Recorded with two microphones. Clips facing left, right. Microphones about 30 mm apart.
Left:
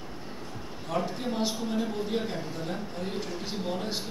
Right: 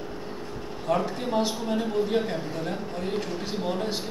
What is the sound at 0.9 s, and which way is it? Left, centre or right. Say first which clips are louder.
Speech: right 5 dB; centre.